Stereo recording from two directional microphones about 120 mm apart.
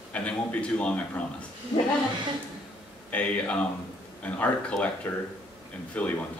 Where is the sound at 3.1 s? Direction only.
10° left (ahead or behind).